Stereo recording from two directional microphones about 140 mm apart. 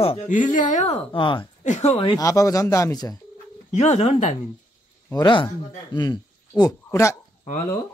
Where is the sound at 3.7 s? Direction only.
50° left (ahead or behind).